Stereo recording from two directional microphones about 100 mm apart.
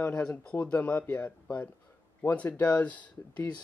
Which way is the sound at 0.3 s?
15° left (ahead or behind).